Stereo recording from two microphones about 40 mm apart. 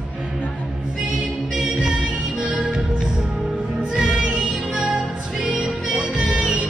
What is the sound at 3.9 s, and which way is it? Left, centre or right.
Music, centre.